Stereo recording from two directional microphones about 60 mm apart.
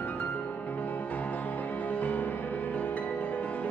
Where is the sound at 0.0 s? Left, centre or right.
Left.